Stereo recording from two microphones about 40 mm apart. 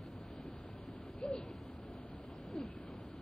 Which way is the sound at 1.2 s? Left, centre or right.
Centre.